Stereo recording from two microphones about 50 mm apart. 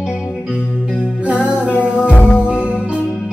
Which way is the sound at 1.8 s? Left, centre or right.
Left.